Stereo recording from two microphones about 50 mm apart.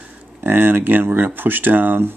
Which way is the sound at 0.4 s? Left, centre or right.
Right.